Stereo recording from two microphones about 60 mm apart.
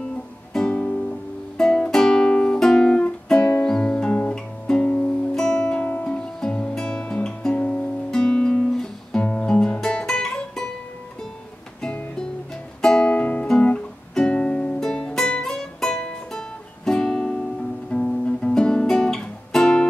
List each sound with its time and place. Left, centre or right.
0.5 s music: centre
5.9 s music: left
6.1 s music: centre
6.7 s guitar: centre
7.5 s music: left
11.8 s music: centre
13.1 s music: left
13.6 s guitar: left
14.1 s music: centre